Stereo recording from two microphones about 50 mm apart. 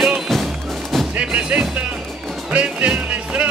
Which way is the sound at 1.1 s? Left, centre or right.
Right.